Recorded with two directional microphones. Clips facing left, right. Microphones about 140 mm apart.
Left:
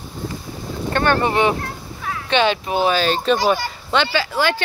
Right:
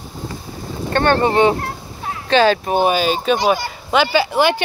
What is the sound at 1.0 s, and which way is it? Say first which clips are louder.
Speech: right 3 dB; 30° right (ahead or behind).